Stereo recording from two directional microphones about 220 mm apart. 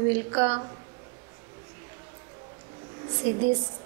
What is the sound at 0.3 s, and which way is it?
Speech, 25° right (ahead or behind).